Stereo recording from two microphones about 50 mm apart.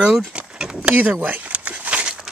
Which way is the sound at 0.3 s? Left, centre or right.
Centre.